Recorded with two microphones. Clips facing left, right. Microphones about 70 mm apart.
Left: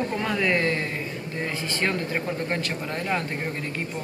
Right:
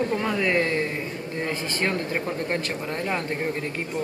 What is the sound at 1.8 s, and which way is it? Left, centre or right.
Speech, centre.